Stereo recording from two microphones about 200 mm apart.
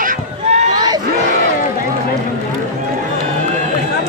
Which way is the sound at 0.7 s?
20° right (ahead or behind).